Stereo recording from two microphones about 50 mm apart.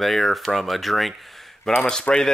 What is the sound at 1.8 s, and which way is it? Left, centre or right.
Speech, centre.